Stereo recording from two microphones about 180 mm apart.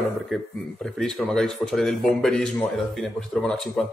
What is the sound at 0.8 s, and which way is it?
A man's voice, 5° left (ahead or behind).